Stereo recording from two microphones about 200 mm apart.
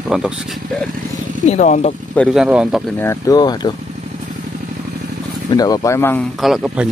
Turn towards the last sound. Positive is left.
turn(degrees=0)  # may be behind; listen again after turning